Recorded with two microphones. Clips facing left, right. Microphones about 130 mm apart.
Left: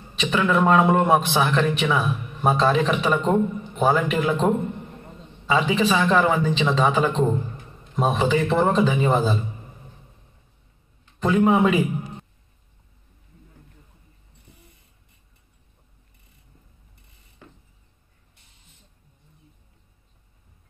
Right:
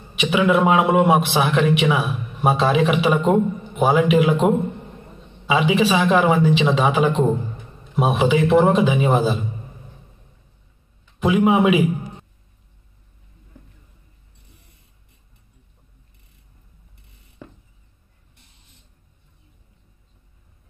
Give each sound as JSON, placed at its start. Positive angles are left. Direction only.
{"t": 0.1, "sound": "a man's voice", "side_deg": -10}
{"t": 5.5, "sound": "a man's voice", "side_deg": -10}
{"t": 11.1, "sound": "a man's voice", "side_deg": -10}